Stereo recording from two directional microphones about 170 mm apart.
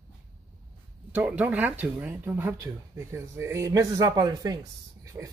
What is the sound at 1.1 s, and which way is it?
Speech, 10° right (ahead or behind).